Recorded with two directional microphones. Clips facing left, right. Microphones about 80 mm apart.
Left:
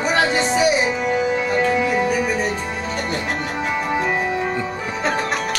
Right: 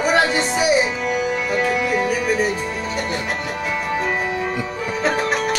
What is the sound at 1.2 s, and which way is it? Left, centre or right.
Music, left.